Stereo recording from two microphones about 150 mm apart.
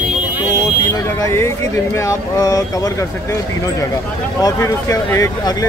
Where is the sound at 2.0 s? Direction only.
25° left (ahead or behind).